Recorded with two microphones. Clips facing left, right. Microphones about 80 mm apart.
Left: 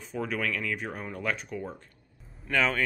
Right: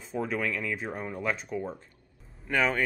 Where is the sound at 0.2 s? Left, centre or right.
Centre.